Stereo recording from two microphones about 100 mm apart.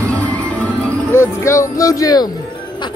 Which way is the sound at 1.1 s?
25° left (ahead or behind).